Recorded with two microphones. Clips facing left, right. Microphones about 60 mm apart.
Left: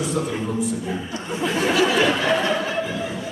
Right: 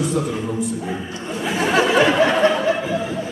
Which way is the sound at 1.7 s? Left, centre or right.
Right.